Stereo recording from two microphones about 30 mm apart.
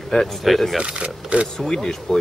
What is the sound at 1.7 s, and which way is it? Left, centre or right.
Speech, centre.